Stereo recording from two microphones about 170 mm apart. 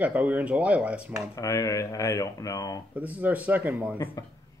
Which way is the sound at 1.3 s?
20° left (ahead or behind).